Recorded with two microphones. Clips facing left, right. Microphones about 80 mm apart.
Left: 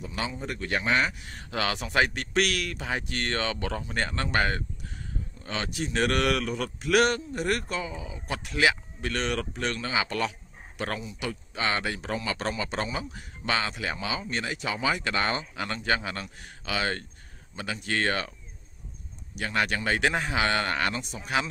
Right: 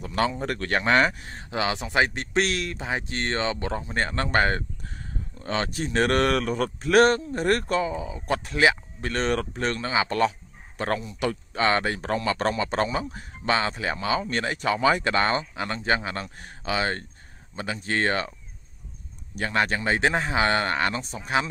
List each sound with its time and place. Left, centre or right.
0.0 s speech: right
1.3 s speech: right
15.5 s speech: right
19.3 s speech: right